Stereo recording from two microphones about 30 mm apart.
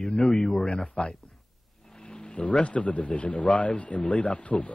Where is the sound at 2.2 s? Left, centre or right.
Left.